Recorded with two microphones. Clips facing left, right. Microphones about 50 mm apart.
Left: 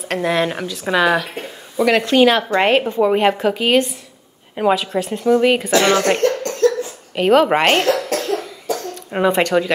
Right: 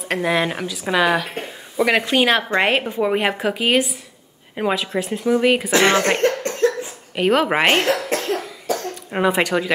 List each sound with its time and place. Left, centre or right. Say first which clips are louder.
0.0 s speech: left 1 dB; centre
5.7 s speech: left 1 dB; right
6.2 s cough: left 2 dB; right
7.2 s speech: left 4 dB; centre
7.9 s cough: left 2 dB; centre
9.1 s speech: left 3 dB; centre